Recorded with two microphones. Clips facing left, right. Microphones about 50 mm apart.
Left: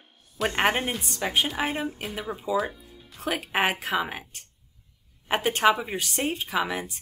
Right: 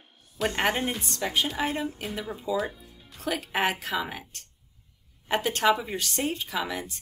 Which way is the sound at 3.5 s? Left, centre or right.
Centre.